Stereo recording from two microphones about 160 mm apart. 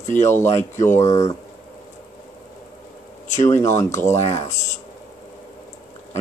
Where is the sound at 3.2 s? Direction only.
50° left (ahead or behind).